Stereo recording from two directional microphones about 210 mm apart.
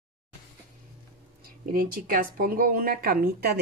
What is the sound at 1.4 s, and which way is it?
Speech, 45° right (ahead or behind).